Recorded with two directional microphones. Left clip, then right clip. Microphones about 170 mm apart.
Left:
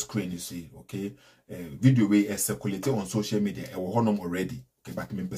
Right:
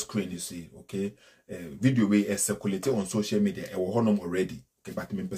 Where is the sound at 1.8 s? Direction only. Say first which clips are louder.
Left 2 dB; 25° right (ahead or behind).